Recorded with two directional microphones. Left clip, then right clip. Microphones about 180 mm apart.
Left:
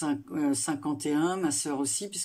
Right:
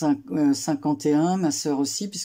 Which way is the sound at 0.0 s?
30° right (ahead or behind).